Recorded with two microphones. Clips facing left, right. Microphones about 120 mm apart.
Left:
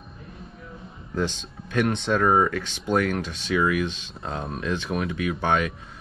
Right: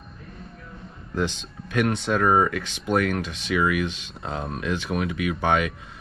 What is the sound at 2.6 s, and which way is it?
Speech, 25° left (ahead or behind).